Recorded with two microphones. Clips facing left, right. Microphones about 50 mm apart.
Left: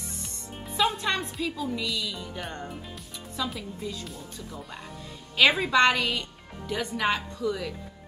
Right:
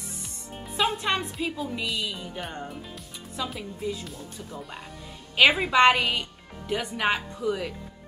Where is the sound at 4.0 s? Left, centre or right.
Centre.